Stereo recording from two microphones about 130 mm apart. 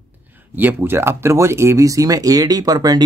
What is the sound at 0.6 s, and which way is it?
Speech, 15° right (ahead or behind).